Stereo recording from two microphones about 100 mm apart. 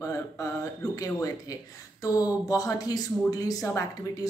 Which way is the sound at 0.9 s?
35° left (ahead or behind).